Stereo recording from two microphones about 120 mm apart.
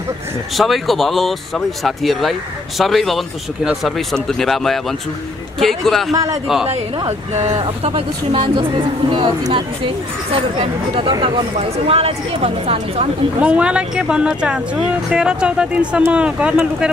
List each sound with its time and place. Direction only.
0.6 s speech: centre (ahead or behind)
6.7 s a woman's voice: 65° right (ahead or behind)
7.8 s speech: 50° right (ahead or behind)
10.6 s speech: 45° right (ahead or behind)
11.9 s a woman's voice: 55° right (ahead or behind)
13.4 s speech: 10° right (ahead or behind)